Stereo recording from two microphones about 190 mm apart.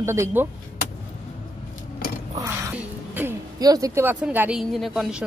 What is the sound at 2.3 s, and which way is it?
Speech, 15° right (ahead or behind).